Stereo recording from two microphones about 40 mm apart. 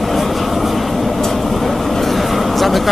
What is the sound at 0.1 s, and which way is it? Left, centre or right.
Vehicle, centre.